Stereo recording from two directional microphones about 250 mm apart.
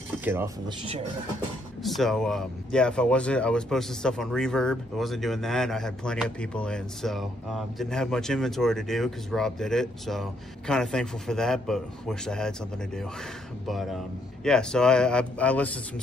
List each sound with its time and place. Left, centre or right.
0.2 s speech: centre
1.8 s speech: centre